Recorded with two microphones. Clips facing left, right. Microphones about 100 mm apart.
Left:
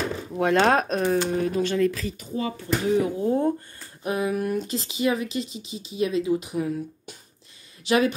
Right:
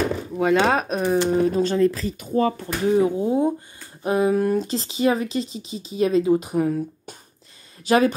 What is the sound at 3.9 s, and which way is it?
Speech, 30° right (ahead or behind).